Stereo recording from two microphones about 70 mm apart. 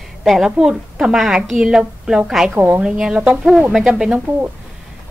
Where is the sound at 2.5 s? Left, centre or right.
Right.